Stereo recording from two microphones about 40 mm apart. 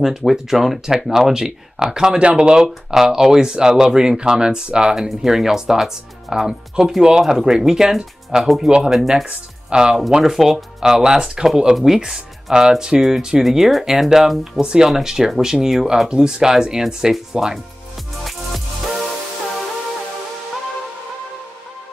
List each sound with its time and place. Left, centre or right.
0.0 s speech: centre
2.1 s speech: right
2.9 s speech: centre
8.6 s speech: centre
14.6 s speech: right
14.9 s speech: centre
18.2 s music: centre